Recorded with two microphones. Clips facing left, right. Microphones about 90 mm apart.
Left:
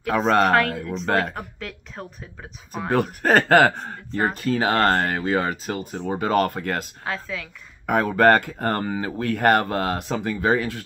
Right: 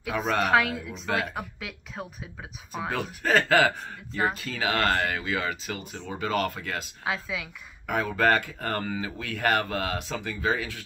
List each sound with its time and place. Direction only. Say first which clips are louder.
0.1 s speech: left 8 dB; 50° left (ahead or behind)
0.5 s speech: left 3 dB; 5° right (ahead or behind)
1.0 s speech: left 6 dB; 50° left (ahead or behind)
1.3 s speech: left 2 dB; 5° right (ahead or behind)
2.9 s speech: left 6 dB; 50° left (ahead or behind)
7.1 s a woman's voice: even; 10° right (ahead or behind)
7.8 s speech: left 7 dB; 45° left (ahead or behind)